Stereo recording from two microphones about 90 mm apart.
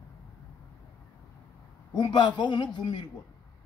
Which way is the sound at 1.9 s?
55° left (ahead or behind).